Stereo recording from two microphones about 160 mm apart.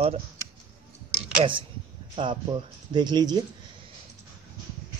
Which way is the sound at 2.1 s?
30° right (ahead or behind).